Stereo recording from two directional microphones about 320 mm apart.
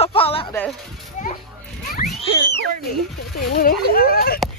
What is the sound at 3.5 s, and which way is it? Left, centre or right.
Speech, left.